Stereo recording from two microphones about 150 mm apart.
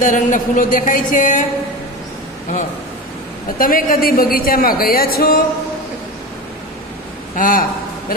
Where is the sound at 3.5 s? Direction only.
70° left (ahead or behind); by 5.4 s 85° left.